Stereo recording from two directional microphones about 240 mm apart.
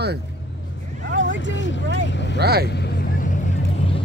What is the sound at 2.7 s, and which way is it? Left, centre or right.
Vehicle, left.